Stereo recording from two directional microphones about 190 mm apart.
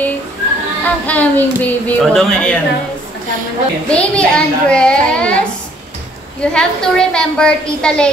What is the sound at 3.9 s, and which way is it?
A woman's voice, 5° left (ahead or behind).